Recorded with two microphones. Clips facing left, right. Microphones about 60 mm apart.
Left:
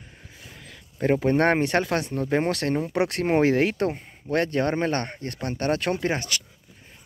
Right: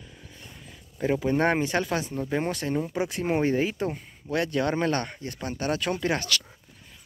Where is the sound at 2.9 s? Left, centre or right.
Left.